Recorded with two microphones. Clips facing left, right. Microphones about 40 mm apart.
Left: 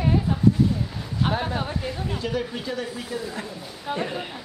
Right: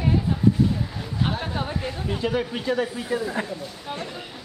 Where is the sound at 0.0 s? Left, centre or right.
Centre.